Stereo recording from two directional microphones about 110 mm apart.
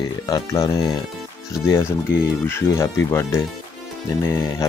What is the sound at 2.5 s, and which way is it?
Speech, 25° left (ahead or behind).